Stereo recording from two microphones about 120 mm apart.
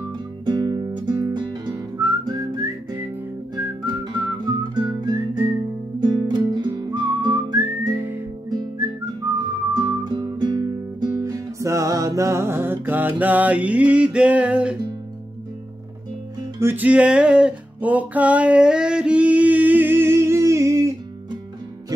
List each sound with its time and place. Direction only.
0.5 s music: 40° right (ahead or behind)
5.9 s whistling: 40° right (ahead or behind)
9.8 s music: 35° right (ahead or behind); by 14.8 s 10° right (ahead or behind)
16.5 s music: 20° right (ahead or behind)